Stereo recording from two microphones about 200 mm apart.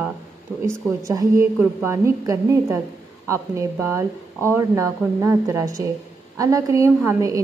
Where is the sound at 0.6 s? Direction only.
15° right (ahead or behind).